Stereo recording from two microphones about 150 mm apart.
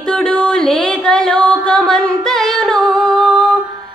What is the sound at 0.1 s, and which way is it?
Music, 5° left (ahead or behind).